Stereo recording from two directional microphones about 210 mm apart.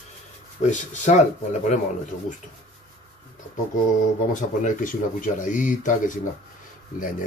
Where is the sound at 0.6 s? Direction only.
35° left (ahead or behind).